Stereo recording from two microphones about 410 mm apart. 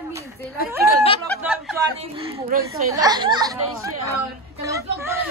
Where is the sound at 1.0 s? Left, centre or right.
Centre.